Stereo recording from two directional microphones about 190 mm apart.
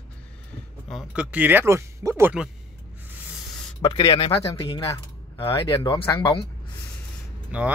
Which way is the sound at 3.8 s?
20° left (ahead or behind).